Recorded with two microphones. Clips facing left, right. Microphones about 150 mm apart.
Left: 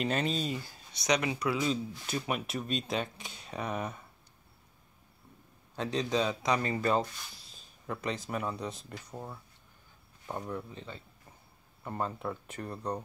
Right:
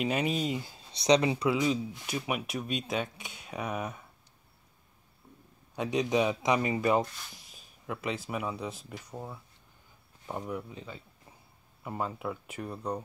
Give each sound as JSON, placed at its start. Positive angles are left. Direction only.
{"t": 0.0, "sound": "speech", "side_deg": -10}
{"t": 1.6, "sound": "speech", "side_deg": -10}
{"t": 5.8, "sound": "speech", "side_deg": -15}
{"t": 7.8, "sound": "speech", "side_deg": -5}